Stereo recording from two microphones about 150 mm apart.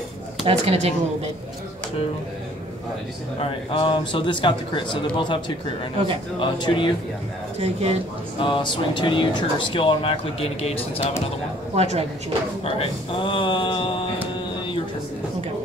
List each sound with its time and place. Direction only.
0.5 s speech: 45° right (ahead or behind)
3.3 s speech: 40° left (ahead or behind)
6.4 s speech: 35° left (ahead or behind)
7.5 s speech: 45° right (ahead or behind)
8.4 s speech: 35° left (ahead or behind)
11.7 s speech: 50° right (ahead or behind)
12.6 s speech: 40° left (ahead or behind)